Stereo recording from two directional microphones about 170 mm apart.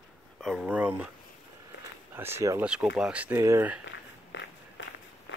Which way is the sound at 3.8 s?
90° left.